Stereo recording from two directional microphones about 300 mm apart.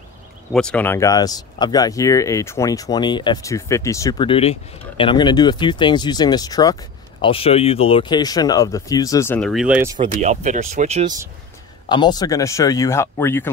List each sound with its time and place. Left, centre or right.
0.5 s speech: centre
10.2 s speech: right
11.9 s speech: centre